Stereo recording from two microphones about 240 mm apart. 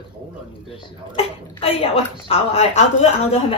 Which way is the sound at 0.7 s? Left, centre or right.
Left.